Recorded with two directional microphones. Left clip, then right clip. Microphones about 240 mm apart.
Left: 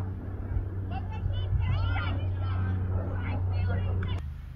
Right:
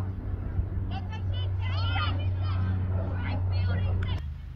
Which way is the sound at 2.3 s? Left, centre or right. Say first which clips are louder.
Right 1 dB; right.